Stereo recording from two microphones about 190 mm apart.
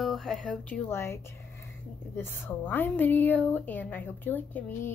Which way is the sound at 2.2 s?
10° left (ahead or behind).